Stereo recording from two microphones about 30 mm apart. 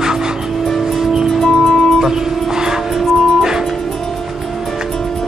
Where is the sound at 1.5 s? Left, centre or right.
Left.